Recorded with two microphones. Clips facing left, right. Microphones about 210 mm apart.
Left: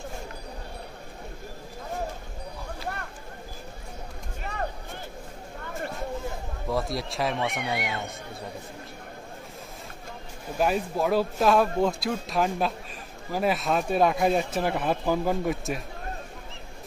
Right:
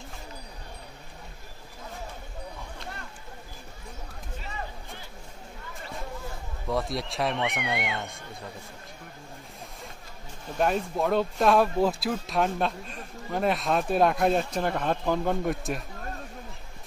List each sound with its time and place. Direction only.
4.4 s a sound: 60° left (ahead or behind)
6.7 s speech: centre (ahead or behind)
10.6 s speech: 5° left (ahead or behind)